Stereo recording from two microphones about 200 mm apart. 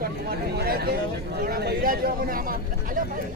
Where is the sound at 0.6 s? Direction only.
50° right (ahead or behind).